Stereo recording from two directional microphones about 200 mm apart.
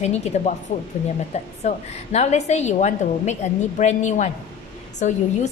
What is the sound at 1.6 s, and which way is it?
A woman's voice, 35° left (ahead or behind).